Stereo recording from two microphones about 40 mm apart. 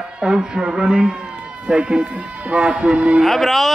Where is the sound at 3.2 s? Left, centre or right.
Centre.